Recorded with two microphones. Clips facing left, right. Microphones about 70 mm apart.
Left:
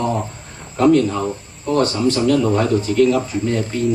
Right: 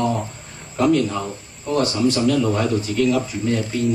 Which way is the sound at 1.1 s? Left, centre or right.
Centre.